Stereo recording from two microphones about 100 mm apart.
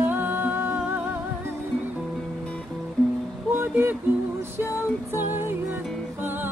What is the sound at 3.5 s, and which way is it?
Music, 25° right (ahead or behind).